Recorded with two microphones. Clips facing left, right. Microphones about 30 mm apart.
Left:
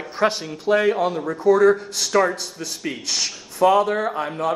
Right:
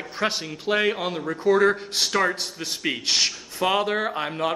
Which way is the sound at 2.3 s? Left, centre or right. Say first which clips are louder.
Even; right.